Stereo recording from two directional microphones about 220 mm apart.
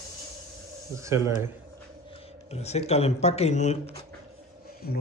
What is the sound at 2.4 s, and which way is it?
Speech, 30° left (ahead or behind).